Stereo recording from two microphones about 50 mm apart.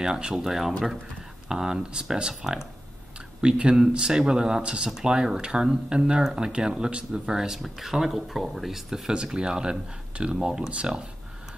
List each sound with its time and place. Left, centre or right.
0.0 s speech: centre
9.1 s speech: centre